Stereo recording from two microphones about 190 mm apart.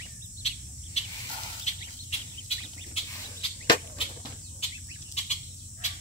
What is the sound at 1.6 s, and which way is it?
Bird, 35° left (ahead or behind).